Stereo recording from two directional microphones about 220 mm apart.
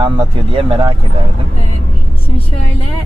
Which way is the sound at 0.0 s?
20° right (ahead or behind).